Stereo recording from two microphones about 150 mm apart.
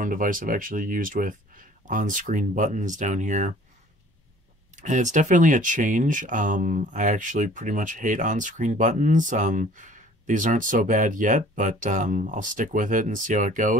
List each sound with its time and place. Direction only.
0.0 s speech: 65° right (ahead or behind)
4.7 s speech: 55° right (ahead or behind)